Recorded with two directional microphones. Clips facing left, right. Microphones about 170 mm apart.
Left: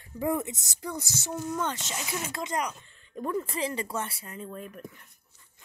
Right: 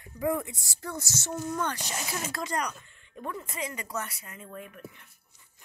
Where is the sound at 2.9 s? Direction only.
35° left (ahead or behind).